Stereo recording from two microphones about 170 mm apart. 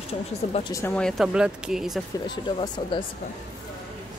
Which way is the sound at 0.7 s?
20° left (ahead or behind).